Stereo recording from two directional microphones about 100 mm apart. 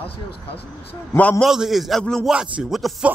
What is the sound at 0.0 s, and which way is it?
Speech, 65° left (ahead or behind).